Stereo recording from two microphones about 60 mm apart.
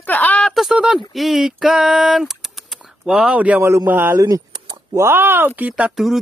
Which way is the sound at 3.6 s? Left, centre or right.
Right.